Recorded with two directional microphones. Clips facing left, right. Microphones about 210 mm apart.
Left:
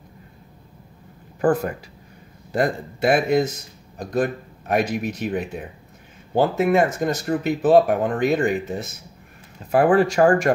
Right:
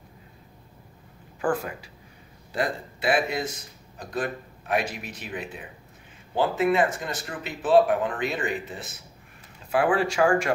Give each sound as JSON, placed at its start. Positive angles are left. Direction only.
{"t": 1.4, "sound": "speech", "side_deg": 45}